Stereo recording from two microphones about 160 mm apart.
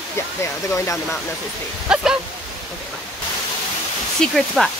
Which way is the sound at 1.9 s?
5° right (ahead or behind).